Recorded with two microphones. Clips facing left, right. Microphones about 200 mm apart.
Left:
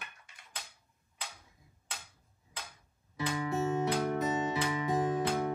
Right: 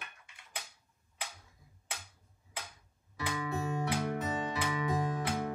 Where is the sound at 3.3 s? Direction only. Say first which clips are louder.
Left 4 dB; 25° left (ahead or behind).